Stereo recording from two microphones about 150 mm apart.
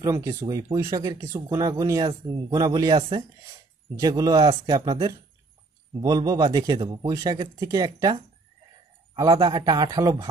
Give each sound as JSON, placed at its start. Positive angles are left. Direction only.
{"t": 0.0, "sound": "speech", "side_deg": -20}
{"t": 3.0, "sound": "speech", "side_deg": -35}
{"t": 3.9, "sound": "speech", "side_deg": -25}
{"t": 5.9, "sound": "speech", "side_deg": -25}